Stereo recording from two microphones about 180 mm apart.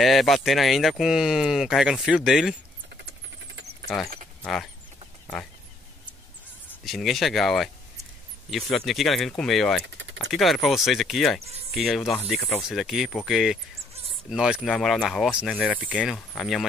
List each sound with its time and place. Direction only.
0.0 s speech: centre (ahead or behind)
3.0 s a sound: 70° right (ahead or behind)
3.8 s speech: centre (ahead or behind)
6.8 s speech: centre (ahead or behind)
9.8 s typing: 90° right
10.2 s speech: centre (ahead or behind)